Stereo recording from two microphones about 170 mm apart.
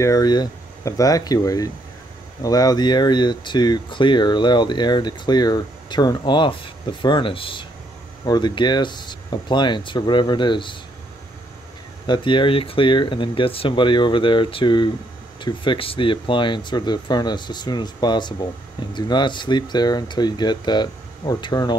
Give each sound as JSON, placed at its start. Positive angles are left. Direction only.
{"t": 0.0, "sound": "speech", "side_deg": 20}
{"t": 12.1, "sound": "speech", "side_deg": 30}